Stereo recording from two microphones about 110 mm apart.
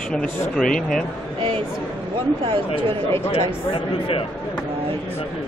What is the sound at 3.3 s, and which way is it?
Speech, 55° left (ahead or behind).